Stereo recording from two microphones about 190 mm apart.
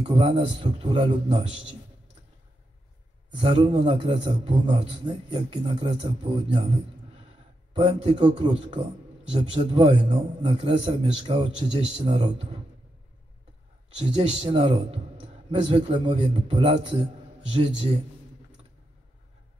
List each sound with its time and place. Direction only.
0.0 s a man's voice: 25° right (ahead or behind)
3.3 s a man's voice: 25° right (ahead or behind)
7.7 s a man's voice: 25° right (ahead or behind)
13.9 s a man's voice: 30° right (ahead or behind)